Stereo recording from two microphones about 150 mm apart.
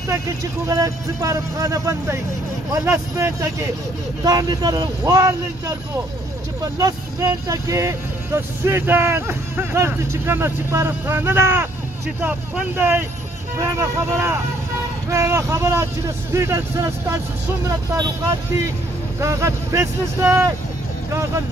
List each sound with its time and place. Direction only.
0.7 s speech: 20° right (ahead or behind)
6.8 s speech: 25° right (ahead or behind)
19.1 s speech: 20° right (ahead or behind)